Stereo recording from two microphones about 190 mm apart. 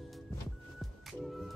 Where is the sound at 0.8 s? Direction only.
Centre (ahead or behind).